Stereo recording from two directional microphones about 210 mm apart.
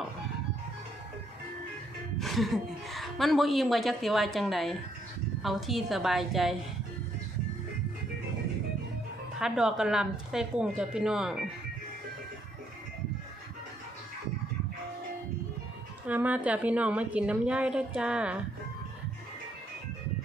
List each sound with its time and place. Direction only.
2.1 s a woman's voice: centre (ahead or behind)
9.4 s a woman's voice: centre (ahead or behind)
16.1 s a woman's voice: 5° right (ahead or behind)